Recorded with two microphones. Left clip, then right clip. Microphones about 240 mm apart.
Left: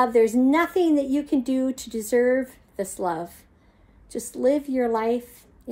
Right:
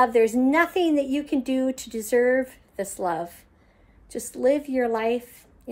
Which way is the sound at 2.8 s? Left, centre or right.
Centre.